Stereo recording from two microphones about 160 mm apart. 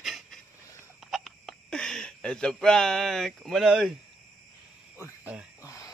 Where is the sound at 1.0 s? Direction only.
Centre (ahead or behind).